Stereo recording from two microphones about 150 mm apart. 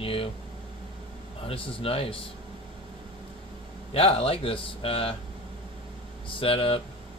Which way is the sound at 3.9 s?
40° left (ahead or behind).